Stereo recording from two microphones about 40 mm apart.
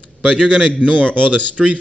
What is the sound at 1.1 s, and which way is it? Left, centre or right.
Speech, right.